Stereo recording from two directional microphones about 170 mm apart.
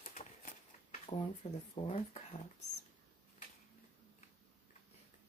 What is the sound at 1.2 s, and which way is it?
Speech, 35° left (ahead or behind).